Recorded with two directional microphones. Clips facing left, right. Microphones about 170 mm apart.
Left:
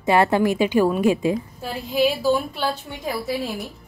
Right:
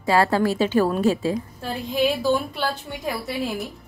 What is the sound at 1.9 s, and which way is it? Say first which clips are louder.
A woman's voice: left 2 dB; 5° left (ahead or behind).